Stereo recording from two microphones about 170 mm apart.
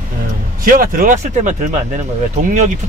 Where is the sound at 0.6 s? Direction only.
60° right (ahead or behind).